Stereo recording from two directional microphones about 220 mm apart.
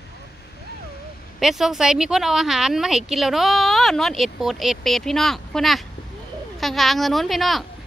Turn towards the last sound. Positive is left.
turn(degrees=0)  # may be behind; listen again after turning